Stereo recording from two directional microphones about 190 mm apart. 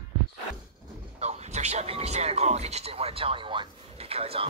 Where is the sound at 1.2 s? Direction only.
35° right (ahead or behind).